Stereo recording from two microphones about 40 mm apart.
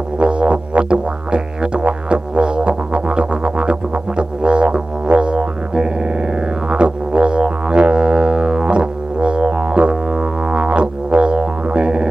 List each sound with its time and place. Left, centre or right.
0.2 s music: right